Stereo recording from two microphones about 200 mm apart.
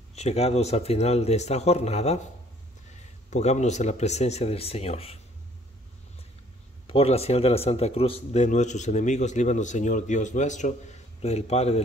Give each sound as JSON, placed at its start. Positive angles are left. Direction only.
{"t": 0.1, "sound": "a man's voice", "side_deg": 30}
{"t": 3.3, "sound": "a man's voice", "side_deg": 35}
{"t": 6.9, "sound": "a man's voice", "side_deg": 30}